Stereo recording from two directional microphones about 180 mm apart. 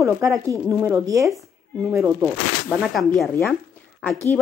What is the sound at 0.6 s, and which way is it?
A woman's voice, 15° right (ahead or behind).